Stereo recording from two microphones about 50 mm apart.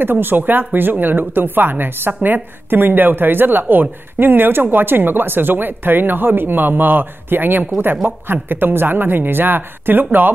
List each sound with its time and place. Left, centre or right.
0.0 s speech: right